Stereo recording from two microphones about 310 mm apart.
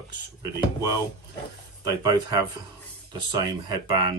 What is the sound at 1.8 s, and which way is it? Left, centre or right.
Speech, centre.